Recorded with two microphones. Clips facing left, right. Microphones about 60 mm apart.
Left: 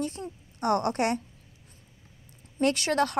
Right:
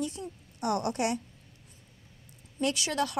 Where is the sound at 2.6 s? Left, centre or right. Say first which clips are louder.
Left 5 dB; left.